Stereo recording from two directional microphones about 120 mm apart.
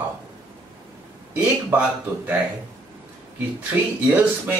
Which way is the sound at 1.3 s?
15° right (ahead or behind).